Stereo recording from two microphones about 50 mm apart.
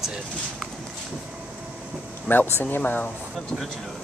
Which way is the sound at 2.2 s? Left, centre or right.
Left.